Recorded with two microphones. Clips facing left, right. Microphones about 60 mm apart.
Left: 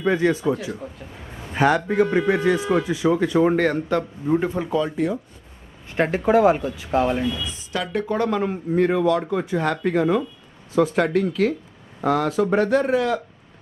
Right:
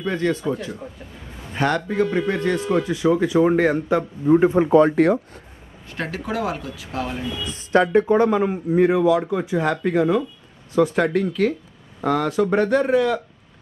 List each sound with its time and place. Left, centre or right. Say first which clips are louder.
0.0 s a man's voice: left 3 dB; centre
1.9 s speech: left 2 dB; left
2.1 s a man's voice: left 2 dB; centre
4.5 s speech: right 8 dB; right
4.7 s speech: right 7 dB; right
5.9 s speech: left 8 dB; left
7.7 s speech: right 10 dB; right
8.0 s a man's voice: right 5 dB; centre